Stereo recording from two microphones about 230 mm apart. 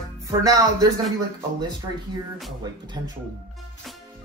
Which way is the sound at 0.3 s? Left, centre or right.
Centre.